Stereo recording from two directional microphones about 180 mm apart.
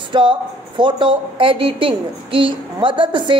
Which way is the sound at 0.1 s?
25° right (ahead or behind).